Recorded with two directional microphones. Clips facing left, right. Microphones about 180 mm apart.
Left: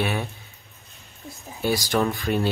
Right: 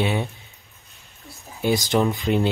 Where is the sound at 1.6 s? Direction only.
20° right (ahead or behind).